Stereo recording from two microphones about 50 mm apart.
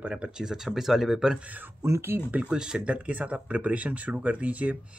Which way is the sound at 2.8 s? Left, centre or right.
Right.